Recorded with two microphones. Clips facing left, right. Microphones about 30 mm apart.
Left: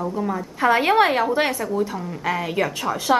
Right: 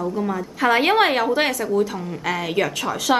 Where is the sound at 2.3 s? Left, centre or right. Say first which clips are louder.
Right 1 dB; right.